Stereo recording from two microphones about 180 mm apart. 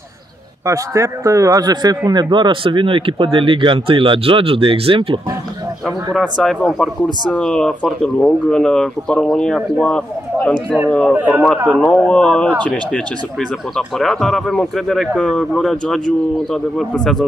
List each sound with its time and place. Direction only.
0.7 s a man's voice: 15° right (ahead or behind)
6.1 s speech: centre (ahead or behind)
11.1 s a man's voice: 10° right (ahead or behind)
11.7 s speech: 5° left (ahead or behind)